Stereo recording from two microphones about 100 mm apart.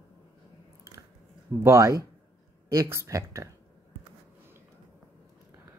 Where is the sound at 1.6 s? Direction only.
30° right (ahead or behind).